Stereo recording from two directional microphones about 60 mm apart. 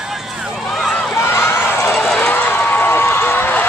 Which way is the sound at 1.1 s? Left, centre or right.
Left.